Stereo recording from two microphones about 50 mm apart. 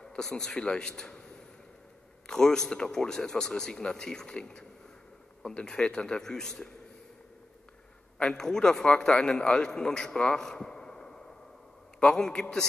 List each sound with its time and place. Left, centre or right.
0.0 s speech: centre
0.6 s speech: centre
2.2 s speech: centre
8.3 s speech: centre
10.4 s a sound: centre
12.0 s speech: centre